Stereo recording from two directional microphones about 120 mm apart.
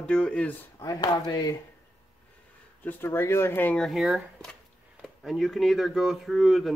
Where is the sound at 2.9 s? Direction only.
20° left (ahead or behind).